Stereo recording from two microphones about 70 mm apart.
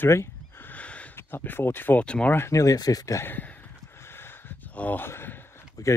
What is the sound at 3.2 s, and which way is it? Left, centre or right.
Speech, left.